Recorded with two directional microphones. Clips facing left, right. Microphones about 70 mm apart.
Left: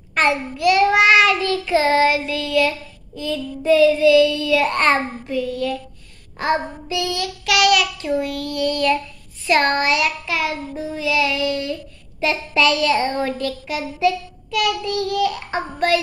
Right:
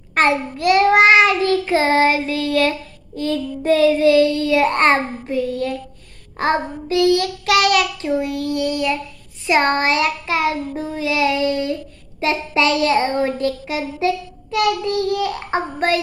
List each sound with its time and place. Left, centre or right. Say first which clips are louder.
0.1 s child singing: right 2 dB; right
7.4 s a child's voice: even; right